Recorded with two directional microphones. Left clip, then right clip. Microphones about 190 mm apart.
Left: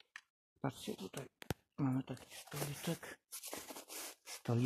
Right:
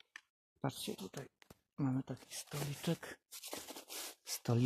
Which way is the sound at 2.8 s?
40° right (ahead or behind).